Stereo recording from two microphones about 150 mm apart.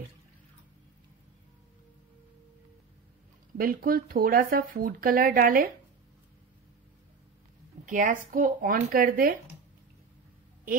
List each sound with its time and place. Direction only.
3.5 s speech: 75° right (ahead or behind)
7.8 s speech: 60° right (ahead or behind)